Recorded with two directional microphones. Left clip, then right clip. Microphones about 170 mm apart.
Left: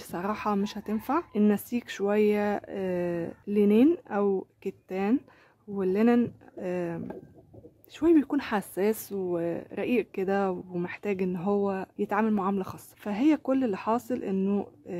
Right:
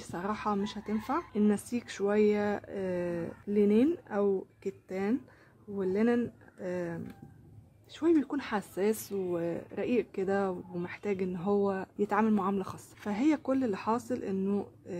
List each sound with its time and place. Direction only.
0.0 s speech: 30° left (ahead or behind)